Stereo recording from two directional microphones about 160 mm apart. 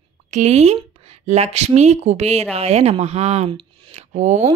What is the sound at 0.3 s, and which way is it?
Speech, 45° right (ahead or behind).